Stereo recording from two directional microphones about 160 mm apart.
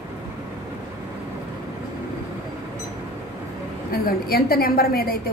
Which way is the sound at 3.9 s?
70° left (ahead or behind).